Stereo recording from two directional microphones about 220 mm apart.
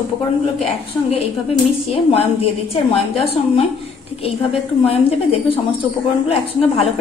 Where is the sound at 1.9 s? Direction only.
25° left (ahead or behind).